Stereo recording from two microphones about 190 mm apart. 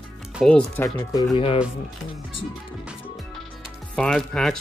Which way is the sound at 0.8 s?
15° left (ahead or behind).